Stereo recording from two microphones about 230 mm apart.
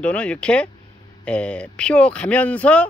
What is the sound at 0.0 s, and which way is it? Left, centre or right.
Speech, centre.